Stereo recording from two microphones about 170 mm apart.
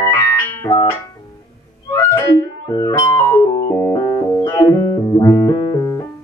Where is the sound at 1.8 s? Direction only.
15° left (ahead or behind).